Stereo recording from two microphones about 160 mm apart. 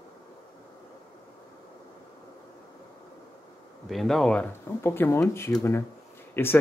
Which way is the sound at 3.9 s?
Centre (ahead or behind).